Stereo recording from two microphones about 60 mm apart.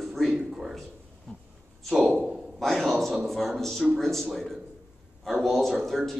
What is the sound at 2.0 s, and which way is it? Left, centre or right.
Speech, centre.